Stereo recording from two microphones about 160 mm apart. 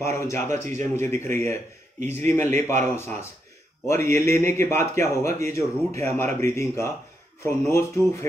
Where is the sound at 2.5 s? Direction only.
45° right (ahead or behind).